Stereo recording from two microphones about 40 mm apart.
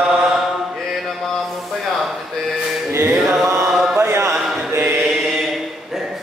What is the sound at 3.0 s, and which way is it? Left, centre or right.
Chant, centre.